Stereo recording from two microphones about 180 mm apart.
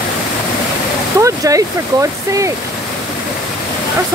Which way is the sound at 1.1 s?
20° right (ahead or behind).